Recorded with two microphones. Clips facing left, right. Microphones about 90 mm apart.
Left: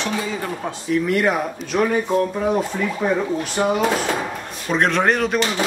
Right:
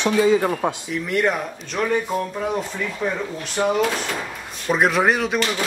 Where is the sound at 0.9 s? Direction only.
Centre (ahead or behind).